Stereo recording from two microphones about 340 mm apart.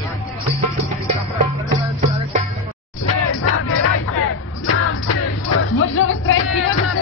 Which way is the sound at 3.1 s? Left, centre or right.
Left.